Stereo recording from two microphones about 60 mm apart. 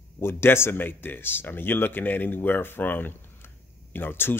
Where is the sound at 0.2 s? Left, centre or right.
Left.